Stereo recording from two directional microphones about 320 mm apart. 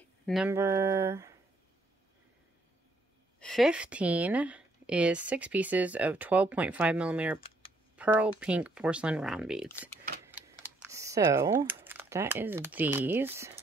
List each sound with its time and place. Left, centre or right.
0.3 s a sound: centre
3.3 s speech: centre
7.3 s computer keyboard: centre
7.9 s speech: centre
10.2 s typing: centre